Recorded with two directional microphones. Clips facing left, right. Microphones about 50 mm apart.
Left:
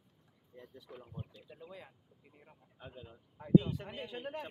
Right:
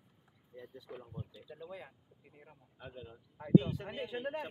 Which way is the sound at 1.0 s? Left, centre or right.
Left.